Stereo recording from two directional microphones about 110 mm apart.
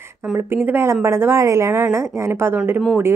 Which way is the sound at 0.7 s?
20° right (ahead or behind).